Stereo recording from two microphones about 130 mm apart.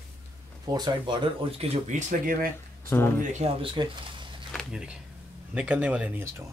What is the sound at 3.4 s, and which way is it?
Speech, 40° right (ahead or behind).